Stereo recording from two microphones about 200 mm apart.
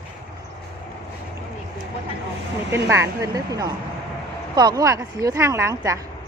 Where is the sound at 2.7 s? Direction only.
15° right (ahead or behind).